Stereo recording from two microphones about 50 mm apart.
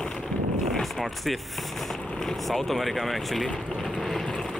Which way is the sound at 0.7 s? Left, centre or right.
Centre.